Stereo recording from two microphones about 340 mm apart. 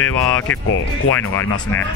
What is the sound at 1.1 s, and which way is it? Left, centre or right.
Speech, centre.